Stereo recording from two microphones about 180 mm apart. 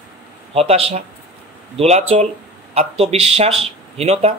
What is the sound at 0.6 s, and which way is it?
Speech, 35° right (ahead or behind).